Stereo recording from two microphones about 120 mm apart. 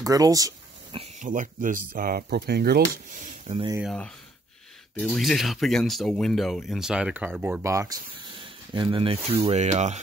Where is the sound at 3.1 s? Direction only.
90° right.